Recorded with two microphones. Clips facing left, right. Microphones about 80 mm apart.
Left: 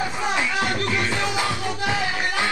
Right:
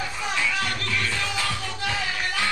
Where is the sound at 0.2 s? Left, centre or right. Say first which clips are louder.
Left 2 dB; left.